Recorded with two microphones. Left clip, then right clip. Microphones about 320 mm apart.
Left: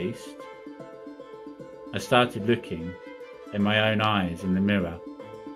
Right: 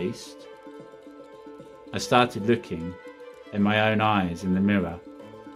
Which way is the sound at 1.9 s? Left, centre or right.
Centre.